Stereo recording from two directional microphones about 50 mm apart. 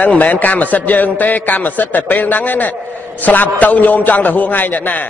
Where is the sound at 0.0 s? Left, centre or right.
Left.